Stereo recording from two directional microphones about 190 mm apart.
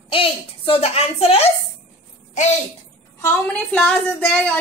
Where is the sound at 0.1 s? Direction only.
30° left (ahead or behind).